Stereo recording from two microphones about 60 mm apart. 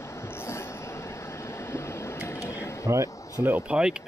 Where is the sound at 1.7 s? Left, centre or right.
Left.